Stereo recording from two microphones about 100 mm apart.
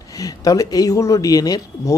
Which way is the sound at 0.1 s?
35° left (ahead or behind).